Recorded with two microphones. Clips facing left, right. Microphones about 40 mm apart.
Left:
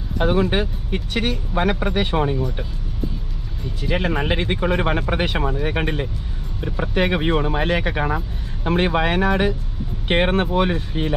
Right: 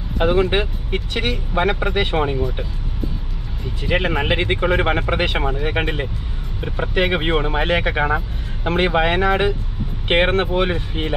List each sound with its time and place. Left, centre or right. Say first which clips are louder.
0.2 s speech: right 2 dB; right
3.9 s speech: right 2 dB; right